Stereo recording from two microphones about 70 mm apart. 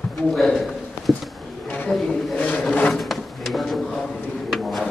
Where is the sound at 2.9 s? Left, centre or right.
Centre.